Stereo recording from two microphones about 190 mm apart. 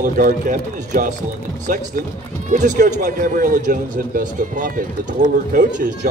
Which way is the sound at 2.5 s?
40° right (ahead or behind).